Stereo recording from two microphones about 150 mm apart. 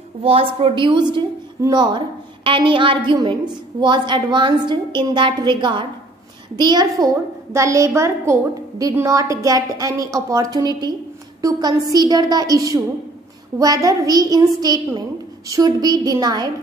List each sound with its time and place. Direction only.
0.2 s a woman's voice: 40° right (ahead or behind)